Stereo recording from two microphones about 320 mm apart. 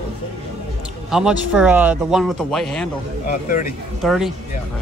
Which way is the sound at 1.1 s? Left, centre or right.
Centre.